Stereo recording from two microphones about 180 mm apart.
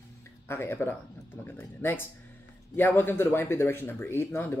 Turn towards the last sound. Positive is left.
turn(degrees=15)  # may be behind; listen again after turning